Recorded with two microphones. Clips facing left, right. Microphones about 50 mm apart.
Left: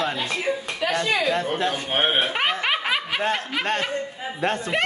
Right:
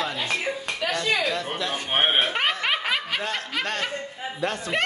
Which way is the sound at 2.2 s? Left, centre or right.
Centre.